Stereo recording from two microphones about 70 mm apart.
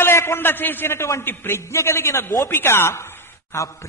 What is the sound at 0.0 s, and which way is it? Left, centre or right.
A man's voice, left.